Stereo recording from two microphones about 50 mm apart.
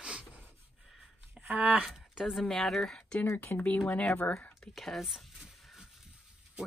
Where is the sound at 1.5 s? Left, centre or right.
Right.